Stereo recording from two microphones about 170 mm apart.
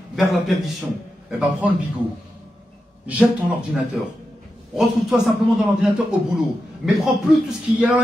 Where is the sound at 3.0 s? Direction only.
5° right (ahead or behind).